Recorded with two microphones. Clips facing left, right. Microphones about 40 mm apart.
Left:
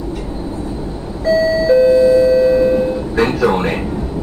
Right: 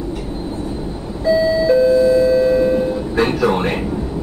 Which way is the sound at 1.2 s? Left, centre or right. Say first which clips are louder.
Left 1 dB; right.